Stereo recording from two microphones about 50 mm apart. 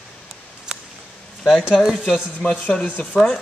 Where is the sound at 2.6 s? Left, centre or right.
Left.